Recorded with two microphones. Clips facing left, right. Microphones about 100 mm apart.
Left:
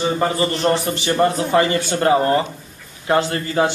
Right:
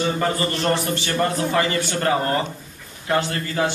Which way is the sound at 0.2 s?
20° left (ahead or behind).